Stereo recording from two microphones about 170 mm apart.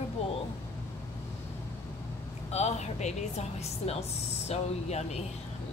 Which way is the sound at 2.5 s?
40° left (ahead or behind).